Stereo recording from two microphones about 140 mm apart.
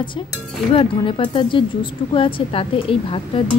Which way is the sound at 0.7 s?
40° left (ahead or behind).